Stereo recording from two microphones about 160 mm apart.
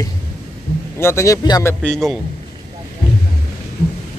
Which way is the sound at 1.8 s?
Centre (ahead or behind).